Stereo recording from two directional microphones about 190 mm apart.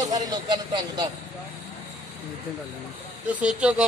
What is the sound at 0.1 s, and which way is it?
A man's voice, 20° right (ahead or behind).